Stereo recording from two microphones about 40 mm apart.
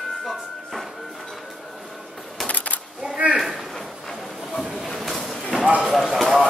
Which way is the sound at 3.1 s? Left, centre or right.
Right.